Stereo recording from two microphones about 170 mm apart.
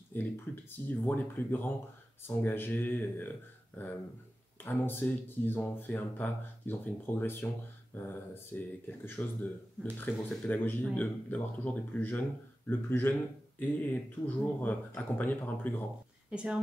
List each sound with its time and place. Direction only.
0.1 s speech: 10° left (ahead or behind)
16.3 s speech: 5° right (ahead or behind)